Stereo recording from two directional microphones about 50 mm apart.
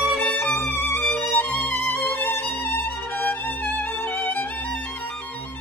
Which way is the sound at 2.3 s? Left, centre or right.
Left.